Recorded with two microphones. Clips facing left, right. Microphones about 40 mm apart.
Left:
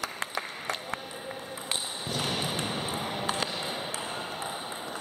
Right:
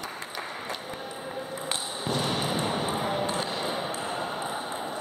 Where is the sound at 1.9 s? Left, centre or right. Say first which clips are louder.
Right 5 dB; right.